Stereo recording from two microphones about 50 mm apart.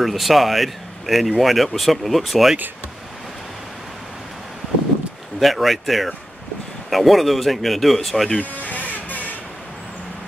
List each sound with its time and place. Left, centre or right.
0.0 s speech: centre
5.4 s speech: centre
8.4 s vehicle: left